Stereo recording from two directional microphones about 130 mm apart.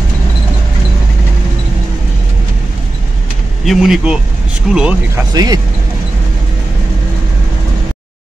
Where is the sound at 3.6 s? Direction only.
5° right (ahead or behind).